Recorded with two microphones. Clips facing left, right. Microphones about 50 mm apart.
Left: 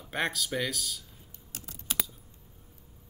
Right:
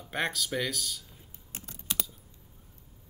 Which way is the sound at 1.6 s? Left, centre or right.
Centre.